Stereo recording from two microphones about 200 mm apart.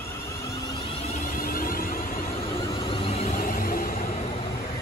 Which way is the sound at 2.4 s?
30° left (ahead or behind).